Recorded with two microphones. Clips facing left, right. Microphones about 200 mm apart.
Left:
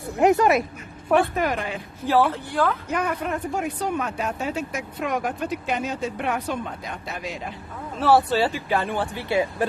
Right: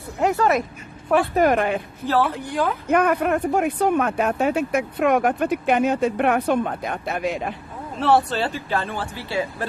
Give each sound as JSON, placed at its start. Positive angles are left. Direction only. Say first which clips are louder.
{"t": 0.2, "sound": "speech", "louder": "left 2 dB", "side_deg": 15}
{"t": 1.3, "sound": "speech", "louder": "right 7 dB", "side_deg": -50}
{"t": 2.3, "sound": "speech", "louder": "even", "side_deg": -15}
{"t": 2.9, "sound": "speech", "louder": "right 7 dB", "side_deg": -60}
{"t": 8.0, "sound": "speech", "louder": "left 1 dB", "side_deg": 5}